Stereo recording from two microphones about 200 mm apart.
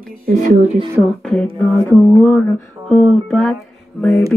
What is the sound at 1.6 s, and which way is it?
Mantra, 15° left (ahead or behind).